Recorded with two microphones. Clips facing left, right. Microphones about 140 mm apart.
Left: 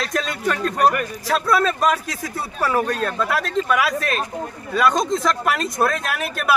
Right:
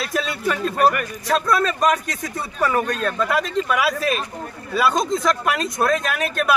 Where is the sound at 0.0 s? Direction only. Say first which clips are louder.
Even; 5° right (ahead or behind).